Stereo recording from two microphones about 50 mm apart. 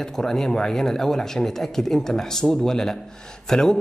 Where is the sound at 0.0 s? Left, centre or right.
Centre.